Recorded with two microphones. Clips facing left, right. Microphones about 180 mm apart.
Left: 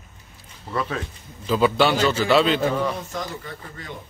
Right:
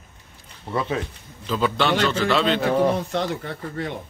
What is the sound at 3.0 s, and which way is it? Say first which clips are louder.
Speech: right 6 dB; 65° right (ahead or behind).